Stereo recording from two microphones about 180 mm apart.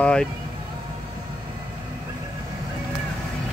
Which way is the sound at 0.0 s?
5° left (ahead or behind).